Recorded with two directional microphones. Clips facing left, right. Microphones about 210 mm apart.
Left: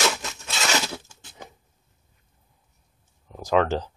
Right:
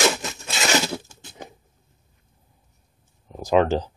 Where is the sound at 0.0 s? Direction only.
10° right (ahead or behind).